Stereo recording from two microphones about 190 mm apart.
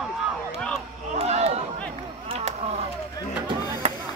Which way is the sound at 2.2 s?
35° right (ahead or behind).